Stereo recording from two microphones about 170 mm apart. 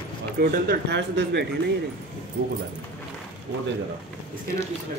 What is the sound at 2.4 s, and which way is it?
Speech, 75° right (ahead or behind).